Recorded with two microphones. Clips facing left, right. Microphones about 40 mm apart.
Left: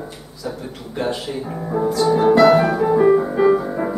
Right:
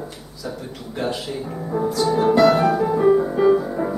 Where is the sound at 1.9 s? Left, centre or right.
Centre.